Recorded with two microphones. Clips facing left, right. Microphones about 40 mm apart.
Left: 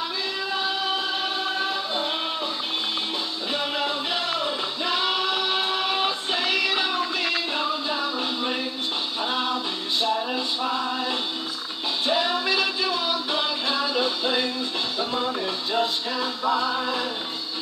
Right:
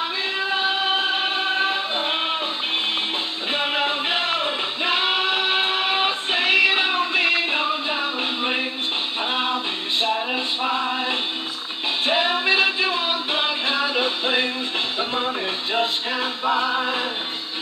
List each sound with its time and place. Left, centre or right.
0.4 s music: right
3.5 s music: right